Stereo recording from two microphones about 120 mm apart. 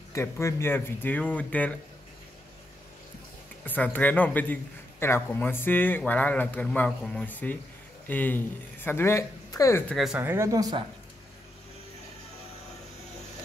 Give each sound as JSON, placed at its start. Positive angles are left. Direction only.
{"t": 0.1, "sound": "speech", "side_deg": 25}
{"t": 3.6, "sound": "speech", "side_deg": 15}
{"t": 10.1, "sound": "speech", "side_deg": -20}